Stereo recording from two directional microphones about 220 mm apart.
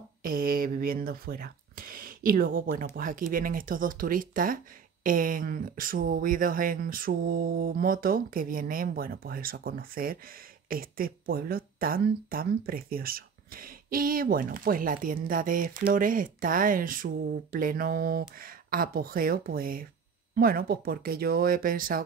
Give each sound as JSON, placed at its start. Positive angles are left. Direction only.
{"t": 0.2, "sound": "speech", "side_deg": -40}